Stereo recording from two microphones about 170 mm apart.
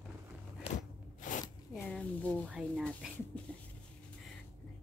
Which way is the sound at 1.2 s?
50° left (ahead or behind).